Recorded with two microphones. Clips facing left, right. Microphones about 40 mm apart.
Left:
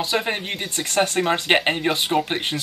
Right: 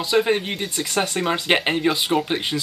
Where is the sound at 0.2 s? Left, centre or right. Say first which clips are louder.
Right 4 dB; centre.